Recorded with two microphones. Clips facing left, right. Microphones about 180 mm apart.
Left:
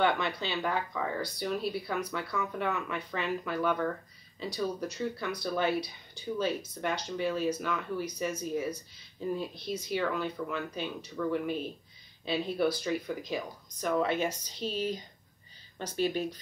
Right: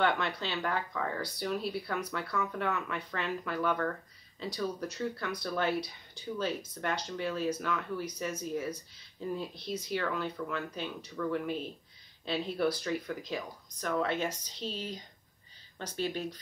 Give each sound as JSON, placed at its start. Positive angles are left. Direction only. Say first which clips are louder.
{"t": 0.0, "sound": "speech", "louder": "left 2 dB", "side_deg": 0}